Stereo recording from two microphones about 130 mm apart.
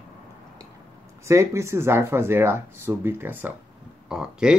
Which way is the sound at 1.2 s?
20° right (ahead or behind).